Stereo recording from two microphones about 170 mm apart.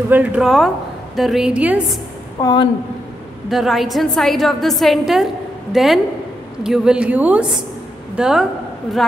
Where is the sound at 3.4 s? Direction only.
Centre (ahead or behind).